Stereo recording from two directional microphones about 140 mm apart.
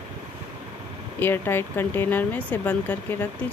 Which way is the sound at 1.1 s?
15° left (ahead or behind).